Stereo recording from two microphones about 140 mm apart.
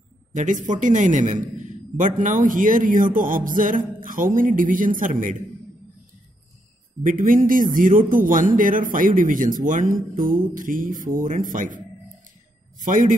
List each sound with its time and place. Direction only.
0.3 s a man's voice: 65° right (ahead or behind)
7.0 s speech: 70° right (ahead or behind)
10.1 s speech: 80° right